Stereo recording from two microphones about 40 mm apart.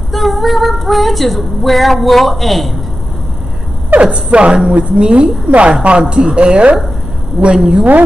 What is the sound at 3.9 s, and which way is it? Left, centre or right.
Speech, right.